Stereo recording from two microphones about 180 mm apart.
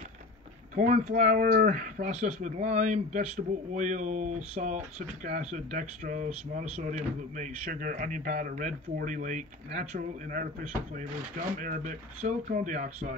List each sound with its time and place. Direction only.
0.7 s speech: 40° right (ahead or behind)